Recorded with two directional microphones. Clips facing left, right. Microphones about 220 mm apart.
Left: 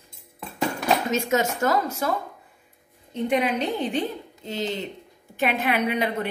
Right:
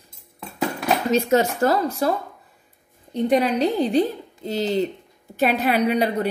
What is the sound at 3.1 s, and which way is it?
A woman's voice, 35° right (ahead or behind).